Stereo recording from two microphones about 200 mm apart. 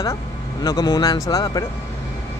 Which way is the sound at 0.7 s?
20° left (ahead or behind).